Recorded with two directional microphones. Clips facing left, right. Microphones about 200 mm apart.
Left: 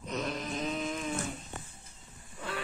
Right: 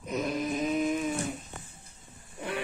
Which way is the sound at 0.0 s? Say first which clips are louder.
Right 5 dB; 10° right (ahead or behind).